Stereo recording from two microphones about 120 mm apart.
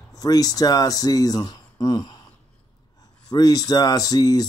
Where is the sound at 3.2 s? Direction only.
30° left (ahead or behind).